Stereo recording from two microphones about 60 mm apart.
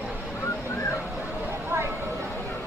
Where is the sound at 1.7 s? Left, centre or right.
Right.